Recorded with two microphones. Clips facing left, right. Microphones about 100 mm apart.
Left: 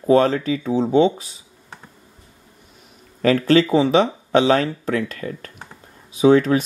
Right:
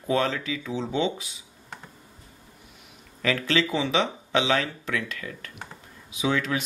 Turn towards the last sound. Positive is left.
turn(degrees=40)  # may be behind; listen again after turning